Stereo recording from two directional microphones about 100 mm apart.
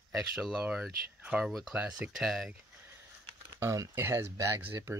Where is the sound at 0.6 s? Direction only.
10° right (ahead or behind).